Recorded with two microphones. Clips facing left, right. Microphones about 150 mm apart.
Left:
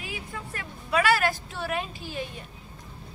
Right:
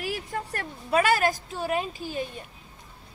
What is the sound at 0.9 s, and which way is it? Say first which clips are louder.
Speech: right 1 dB; 40° right (ahead or behind).